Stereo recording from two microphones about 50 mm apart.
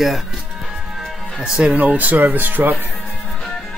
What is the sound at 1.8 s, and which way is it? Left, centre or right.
Speech, right.